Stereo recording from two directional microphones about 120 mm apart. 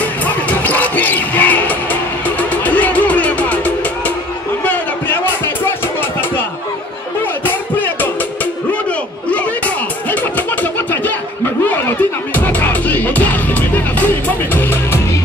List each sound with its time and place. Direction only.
0.2 s music: 15° left (ahead or behind)
7.4 s music: 15° left (ahead or behind)
10.3 s music: 15° left (ahead or behind)